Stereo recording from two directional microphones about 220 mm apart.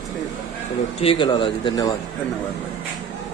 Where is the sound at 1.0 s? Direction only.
25° left (ahead or behind).